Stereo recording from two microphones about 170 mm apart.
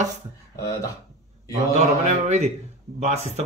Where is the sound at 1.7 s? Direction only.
40° right (ahead or behind).